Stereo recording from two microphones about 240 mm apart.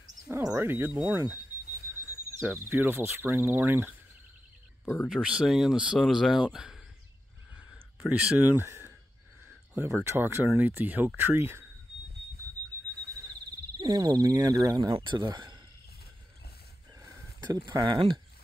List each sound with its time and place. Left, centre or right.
0.3 s speech: centre
2.7 s speech: centre
4.8 s speech: centre
5.1 s speech: centre
7.5 s a sound: centre
9.8 s speech: centre
13.7 s speech: centre
17.6 s speech: centre